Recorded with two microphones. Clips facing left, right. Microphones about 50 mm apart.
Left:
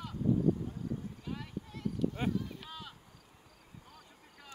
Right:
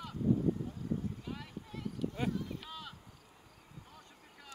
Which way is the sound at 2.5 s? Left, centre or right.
Centre.